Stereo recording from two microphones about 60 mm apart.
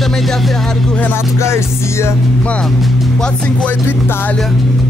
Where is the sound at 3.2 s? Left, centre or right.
Centre.